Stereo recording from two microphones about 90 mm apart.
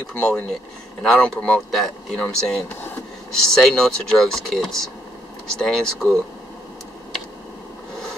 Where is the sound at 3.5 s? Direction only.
5° left (ahead or behind).